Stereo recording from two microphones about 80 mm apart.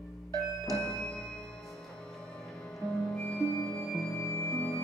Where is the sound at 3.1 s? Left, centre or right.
Centre.